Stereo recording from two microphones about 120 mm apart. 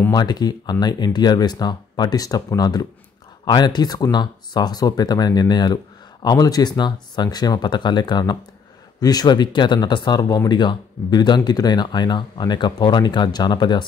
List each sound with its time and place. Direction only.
0.1 s speech: 35° left (ahead or behind)